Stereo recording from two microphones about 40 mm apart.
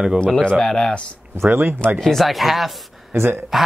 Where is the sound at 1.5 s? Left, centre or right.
Right.